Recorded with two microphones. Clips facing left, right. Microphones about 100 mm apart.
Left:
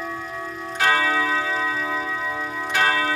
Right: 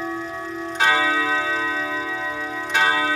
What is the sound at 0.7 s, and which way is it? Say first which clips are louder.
Clock: right 1 dB; 15° right (ahead or behind).